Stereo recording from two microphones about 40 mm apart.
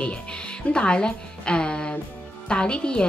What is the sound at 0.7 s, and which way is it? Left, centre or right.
A woman's voice, left.